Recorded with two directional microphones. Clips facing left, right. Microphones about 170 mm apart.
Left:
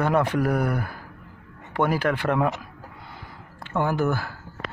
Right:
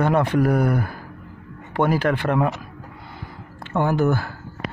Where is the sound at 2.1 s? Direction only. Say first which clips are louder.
Right 3 dB; 40° right (ahead or behind).